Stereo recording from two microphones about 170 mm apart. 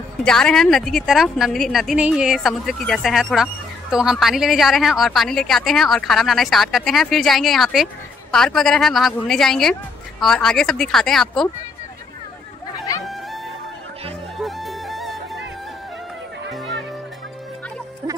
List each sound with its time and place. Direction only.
0.2 s a woman's voice: 5° left (ahead or behind)
12.7 s chatter: 20° left (ahead or behind)
13.0 s music: centre (ahead or behind)
14.4 s music: centre (ahead or behind)
16.5 s music: centre (ahead or behind)